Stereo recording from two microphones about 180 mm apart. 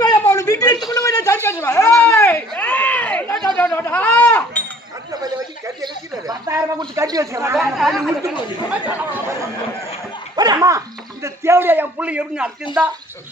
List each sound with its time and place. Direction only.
0.2 s a sound: 15° left (ahead or behind)
5.8 s speech: 20° right (ahead or behind)
7.7 s a man's voice: centre (ahead or behind)
10.3 s a man's voice: 20° right (ahead or behind)
12.7 s speech: 25° left (ahead or behind)